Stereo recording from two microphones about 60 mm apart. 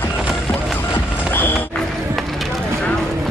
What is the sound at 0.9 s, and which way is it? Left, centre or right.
Music, left.